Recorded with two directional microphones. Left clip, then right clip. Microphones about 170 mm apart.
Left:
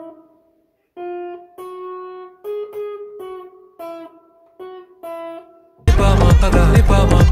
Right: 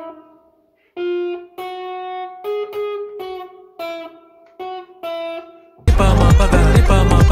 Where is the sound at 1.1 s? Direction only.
30° right (ahead or behind).